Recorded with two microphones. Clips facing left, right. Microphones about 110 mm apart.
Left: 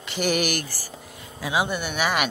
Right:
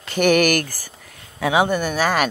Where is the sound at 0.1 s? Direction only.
55° right (ahead or behind).